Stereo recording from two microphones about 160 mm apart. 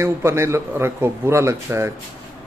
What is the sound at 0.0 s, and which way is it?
Speech, 15° right (ahead or behind).